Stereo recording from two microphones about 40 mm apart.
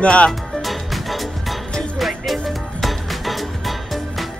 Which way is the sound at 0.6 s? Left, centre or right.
Centre.